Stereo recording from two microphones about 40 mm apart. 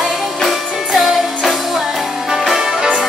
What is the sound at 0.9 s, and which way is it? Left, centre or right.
Music, centre.